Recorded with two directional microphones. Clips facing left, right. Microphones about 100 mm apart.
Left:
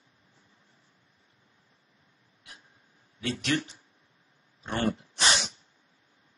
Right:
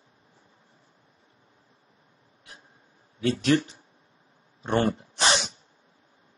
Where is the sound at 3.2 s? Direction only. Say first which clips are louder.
Right 7 dB; 35° right (ahead or behind).